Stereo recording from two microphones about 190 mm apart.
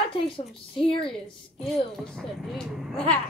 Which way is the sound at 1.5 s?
Centre (ahead or behind).